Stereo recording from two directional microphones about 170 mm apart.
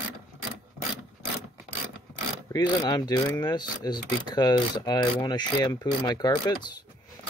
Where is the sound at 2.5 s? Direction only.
20° left (ahead or behind).